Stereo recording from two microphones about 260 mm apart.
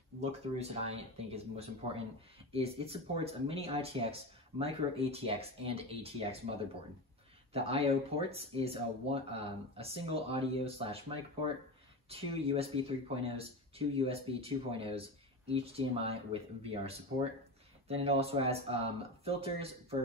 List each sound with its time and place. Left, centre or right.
0.2 s speech: right
7.5 s speech: right